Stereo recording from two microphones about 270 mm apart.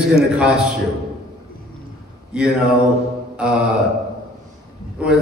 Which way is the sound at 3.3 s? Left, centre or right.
Centre.